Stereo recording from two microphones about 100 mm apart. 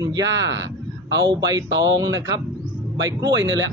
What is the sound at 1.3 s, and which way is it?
Speech, 40° right (ahead or behind).